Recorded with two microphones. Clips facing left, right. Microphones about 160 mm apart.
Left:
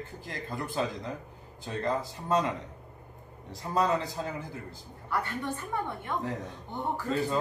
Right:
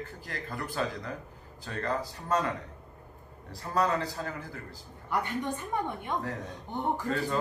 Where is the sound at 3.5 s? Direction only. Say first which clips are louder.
Left 1 dB; 20° left (ahead or behind).